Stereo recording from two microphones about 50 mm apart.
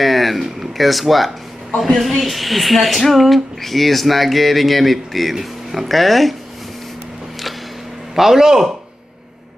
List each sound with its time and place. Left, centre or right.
0.0 s speech: centre
8.1 s a man's voice: centre